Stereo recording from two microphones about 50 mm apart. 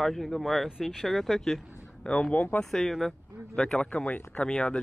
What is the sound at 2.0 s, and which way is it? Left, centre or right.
Speech, left.